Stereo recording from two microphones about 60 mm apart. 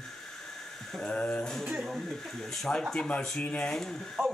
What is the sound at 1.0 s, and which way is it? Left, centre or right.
Speech, centre.